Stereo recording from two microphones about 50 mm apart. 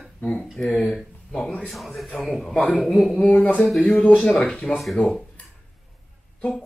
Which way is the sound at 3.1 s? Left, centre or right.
Left.